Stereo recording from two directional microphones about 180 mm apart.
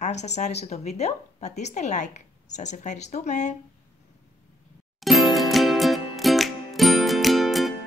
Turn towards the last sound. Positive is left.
turn(degrees=0)  # may be behind; listen again after turning